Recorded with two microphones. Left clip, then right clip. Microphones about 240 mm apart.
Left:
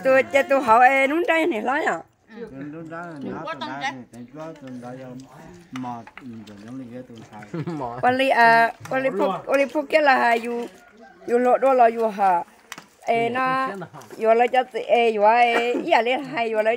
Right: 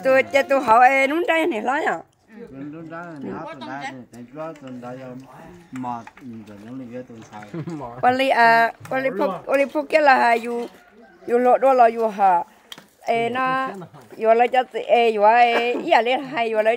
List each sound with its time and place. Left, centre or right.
0.0 s speech: centre
8.0 s speech: centre